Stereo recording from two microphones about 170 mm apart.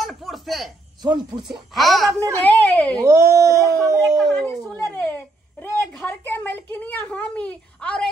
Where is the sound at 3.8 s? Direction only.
20° right (ahead or behind).